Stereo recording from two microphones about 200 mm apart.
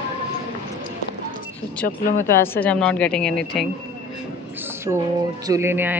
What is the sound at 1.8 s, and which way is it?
Speech, 50° left (ahead or behind).